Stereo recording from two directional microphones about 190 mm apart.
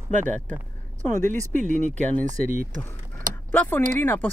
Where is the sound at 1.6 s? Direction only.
40° right (ahead or behind).